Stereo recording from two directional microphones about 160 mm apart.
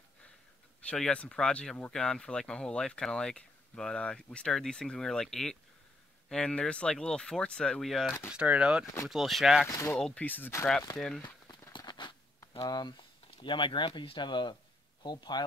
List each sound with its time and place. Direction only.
0.8 s speech: 5° left (ahead or behind)
9.7 s speech: 15° left (ahead or behind)
9.9 s speech: 5° left (ahead or behind)
11.2 s a sound: 25° left (ahead or behind)
15.0 s speech: 25° left (ahead or behind)